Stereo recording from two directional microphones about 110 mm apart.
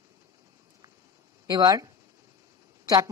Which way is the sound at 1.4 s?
35° right (ahead or behind).